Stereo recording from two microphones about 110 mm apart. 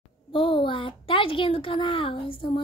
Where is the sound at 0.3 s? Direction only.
50° left (ahead or behind).